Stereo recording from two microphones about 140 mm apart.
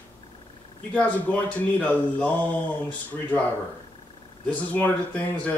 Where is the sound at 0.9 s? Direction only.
10° left (ahead or behind).